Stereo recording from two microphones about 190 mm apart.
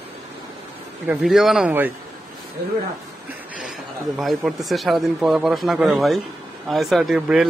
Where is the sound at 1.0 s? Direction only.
5° right (ahead or behind).